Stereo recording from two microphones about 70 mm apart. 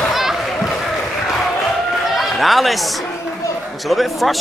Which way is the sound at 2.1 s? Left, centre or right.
Centre.